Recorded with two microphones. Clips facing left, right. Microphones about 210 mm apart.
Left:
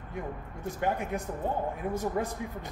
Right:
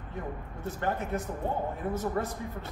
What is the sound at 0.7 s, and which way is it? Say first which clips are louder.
A man's voice: left 1 dB; 15° left (ahead or behind).